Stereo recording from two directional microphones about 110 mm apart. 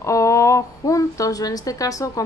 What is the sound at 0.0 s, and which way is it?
A woman's voice, 30° left (ahead or behind).